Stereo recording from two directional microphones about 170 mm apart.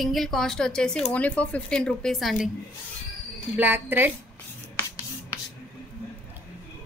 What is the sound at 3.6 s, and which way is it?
Speech, 10° right (ahead or behind).